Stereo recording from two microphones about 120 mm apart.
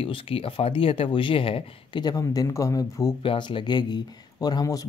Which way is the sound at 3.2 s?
45° left (ahead or behind).